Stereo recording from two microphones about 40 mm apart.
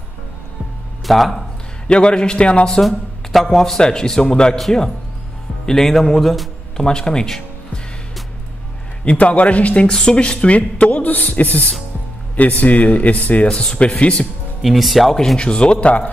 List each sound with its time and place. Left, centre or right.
1.0 s a man's voice: centre
1.9 s speech: left
2.8 s speech: centre; by 4.6 s left
4.6 s a man's voice: centre
6.8 s a man's voice: centre
9.0 s speech: left
9.9 s speech: left
11.1 s a man's voice: left
13.5 s speech: left
14.6 s speech: centre
15.3 s speech: left